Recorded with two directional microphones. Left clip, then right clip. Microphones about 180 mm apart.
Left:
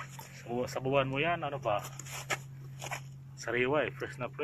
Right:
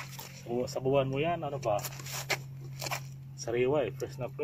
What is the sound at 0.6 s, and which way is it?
Speech, 10° right (ahead or behind).